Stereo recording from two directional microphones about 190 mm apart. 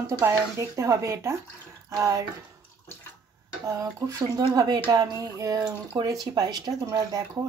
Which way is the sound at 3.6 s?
15° right (ahead or behind).